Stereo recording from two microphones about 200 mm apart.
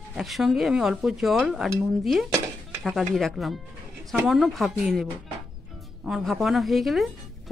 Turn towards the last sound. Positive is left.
turn(degrees=0)  # may be behind; listen again after turning